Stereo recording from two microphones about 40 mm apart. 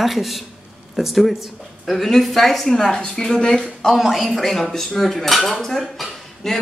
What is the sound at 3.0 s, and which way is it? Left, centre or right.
Speech, centre.